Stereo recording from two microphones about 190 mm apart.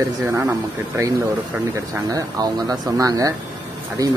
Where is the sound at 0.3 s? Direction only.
15° right (ahead or behind).